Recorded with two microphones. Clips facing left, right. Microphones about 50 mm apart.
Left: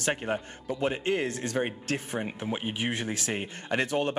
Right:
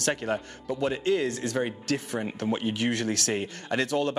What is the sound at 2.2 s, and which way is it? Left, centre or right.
Speech, centre.